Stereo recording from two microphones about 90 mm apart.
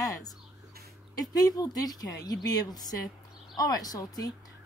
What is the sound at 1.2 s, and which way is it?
Speech, 45° left (ahead or behind).